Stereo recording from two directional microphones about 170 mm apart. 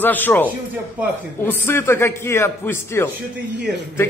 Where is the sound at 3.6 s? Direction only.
90° right.